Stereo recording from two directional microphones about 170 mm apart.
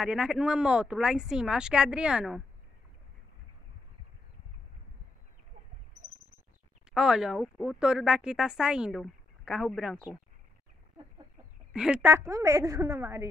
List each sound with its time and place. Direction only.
0.0 s speech: 5° right (ahead or behind)
6.9 s speech: 5° right (ahead or behind)
11.7 s a woman's voice: 5° right (ahead or behind)